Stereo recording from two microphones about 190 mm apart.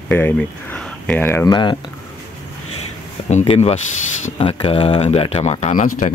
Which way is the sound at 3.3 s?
35° left (ahead or behind).